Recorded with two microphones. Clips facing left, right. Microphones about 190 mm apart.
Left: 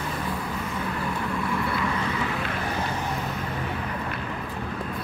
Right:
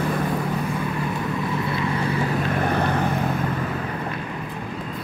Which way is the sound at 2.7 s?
60° right (ahead or behind).